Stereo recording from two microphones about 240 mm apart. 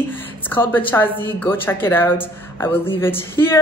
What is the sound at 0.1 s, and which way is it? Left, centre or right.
A woman's voice, centre.